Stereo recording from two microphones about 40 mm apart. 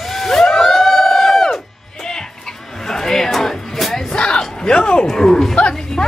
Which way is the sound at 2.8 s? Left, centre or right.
Centre.